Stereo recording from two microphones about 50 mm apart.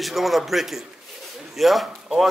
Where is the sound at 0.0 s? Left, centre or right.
Centre.